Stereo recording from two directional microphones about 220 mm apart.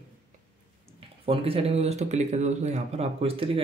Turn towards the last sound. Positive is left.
turn(degrees=-25)  # may be behind; listen again after turning